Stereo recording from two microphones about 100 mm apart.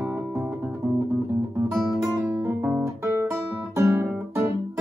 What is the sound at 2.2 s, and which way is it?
Guitar, 15° right (ahead or behind).